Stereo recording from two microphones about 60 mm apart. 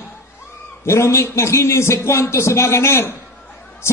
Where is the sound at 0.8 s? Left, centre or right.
Left.